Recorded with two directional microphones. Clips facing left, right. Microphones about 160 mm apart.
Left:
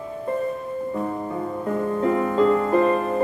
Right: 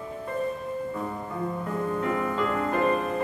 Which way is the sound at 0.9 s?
30° left (ahead or behind).